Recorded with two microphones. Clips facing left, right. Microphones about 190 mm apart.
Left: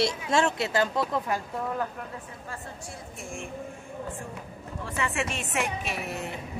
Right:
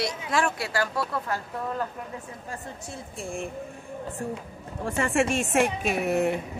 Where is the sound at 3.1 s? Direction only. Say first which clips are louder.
Right 6 dB; 35° right (ahead or behind).